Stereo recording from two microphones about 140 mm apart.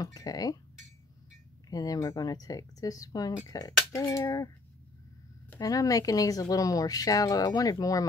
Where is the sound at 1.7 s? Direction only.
25° left (ahead or behind).